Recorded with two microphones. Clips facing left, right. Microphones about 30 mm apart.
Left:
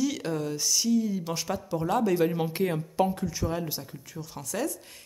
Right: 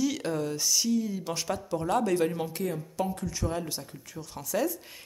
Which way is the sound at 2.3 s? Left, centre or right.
Centre.